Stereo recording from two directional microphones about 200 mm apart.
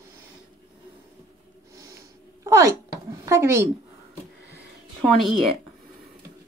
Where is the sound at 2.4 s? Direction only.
15° right (ahead or behind).